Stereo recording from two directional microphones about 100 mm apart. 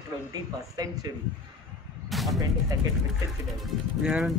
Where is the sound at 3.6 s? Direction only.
Centre (ahead or behind).